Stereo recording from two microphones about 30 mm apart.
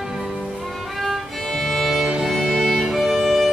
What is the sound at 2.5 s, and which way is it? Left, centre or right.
Music, centre.